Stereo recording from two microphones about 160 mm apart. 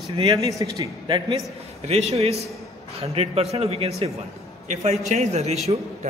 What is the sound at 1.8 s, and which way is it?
A man's voice, 40° right (ahead or behind).